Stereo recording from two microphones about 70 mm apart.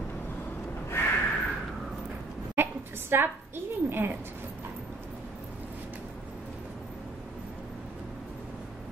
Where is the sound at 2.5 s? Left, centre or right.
Right.